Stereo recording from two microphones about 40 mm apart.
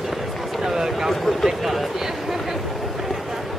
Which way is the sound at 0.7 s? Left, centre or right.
Centre.